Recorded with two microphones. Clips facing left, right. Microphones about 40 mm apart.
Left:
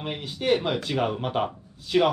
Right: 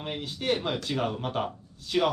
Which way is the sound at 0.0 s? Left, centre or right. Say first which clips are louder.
Left 4 dB; centre.